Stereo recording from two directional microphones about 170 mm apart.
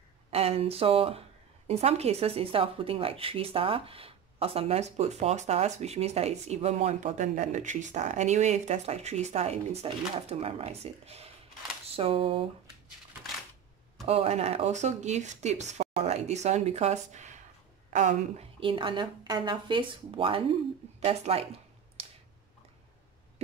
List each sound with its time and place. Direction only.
0.3 s speech: 35° right (ahead or behind)
14.0 s a woman's voice: 35° right (ahead or behind)
18.6 s speech: 30° right (ahead or behind)
21.0 s a sound: 35° right (ahead or behind)